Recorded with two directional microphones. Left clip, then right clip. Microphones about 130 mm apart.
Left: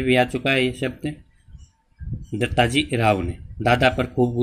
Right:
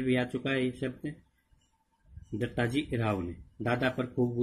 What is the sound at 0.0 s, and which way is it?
Speech, 35° left (ahead or behind).